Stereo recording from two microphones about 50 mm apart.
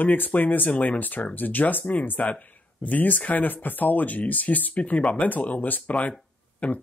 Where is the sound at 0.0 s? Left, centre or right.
Left.